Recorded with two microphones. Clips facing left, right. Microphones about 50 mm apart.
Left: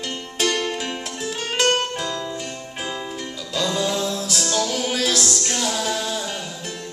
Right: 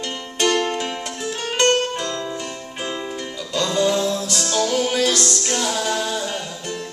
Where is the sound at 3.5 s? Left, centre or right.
Centre.